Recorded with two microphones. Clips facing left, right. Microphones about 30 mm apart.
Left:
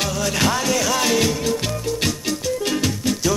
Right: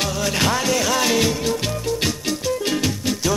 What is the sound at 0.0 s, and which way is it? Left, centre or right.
Music, centre.